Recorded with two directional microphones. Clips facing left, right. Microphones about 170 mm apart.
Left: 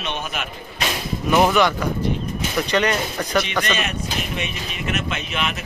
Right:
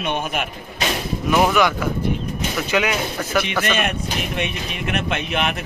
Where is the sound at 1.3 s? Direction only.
Centre (ahead or behind).